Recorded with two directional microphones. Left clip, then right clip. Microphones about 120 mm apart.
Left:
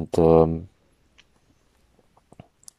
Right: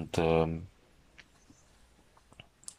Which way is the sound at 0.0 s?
40° left (ahead or behind).